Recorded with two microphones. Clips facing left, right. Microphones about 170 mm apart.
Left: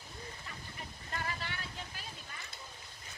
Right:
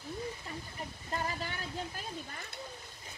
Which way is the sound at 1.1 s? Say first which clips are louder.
Right 4 dB; 35° right (ahead or behind).